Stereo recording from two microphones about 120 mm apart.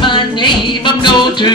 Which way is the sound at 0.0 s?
40° left (ahead or behind).